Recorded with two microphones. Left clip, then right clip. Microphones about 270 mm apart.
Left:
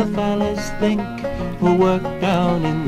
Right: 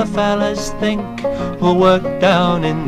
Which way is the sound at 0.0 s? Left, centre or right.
Right.